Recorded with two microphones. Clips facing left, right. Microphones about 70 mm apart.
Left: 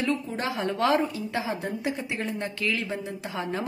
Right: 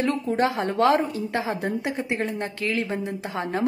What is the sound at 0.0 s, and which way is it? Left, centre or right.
A woman's voice, right.